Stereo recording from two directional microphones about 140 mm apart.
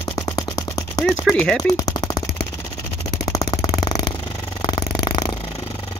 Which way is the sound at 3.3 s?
25° left (ahead or behind).